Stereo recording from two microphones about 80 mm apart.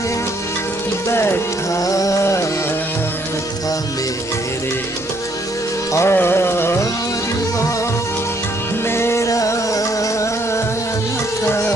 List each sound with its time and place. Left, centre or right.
1.1 s speech: left
1.9 s music: left
5.9 s music: left
8.9 s music: left